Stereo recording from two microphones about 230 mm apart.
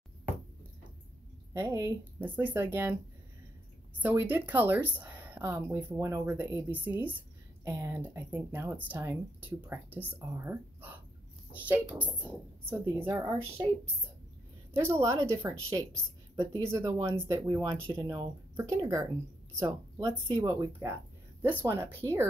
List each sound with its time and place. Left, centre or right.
1.5 s speech: centre
4.0 s speech: centre
14.7 s speech: centre